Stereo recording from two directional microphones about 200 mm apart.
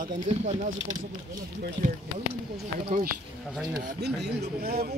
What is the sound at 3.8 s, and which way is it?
Speech, 55° right (ahead or behind).